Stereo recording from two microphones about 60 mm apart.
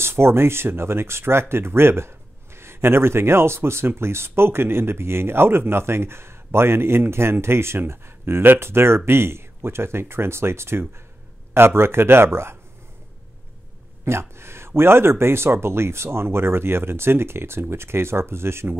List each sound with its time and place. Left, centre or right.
0.0 s speech: right
14.0 s a sound: right
14.8 s speech: right